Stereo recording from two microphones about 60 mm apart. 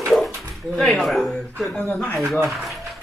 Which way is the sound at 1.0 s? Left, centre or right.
Centre.